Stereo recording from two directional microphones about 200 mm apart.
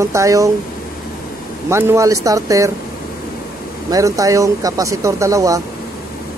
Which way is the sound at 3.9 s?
15° right (ahead or behind).